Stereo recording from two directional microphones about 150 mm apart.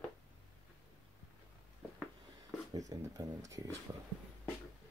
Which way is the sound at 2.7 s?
25° right (ahead or behind).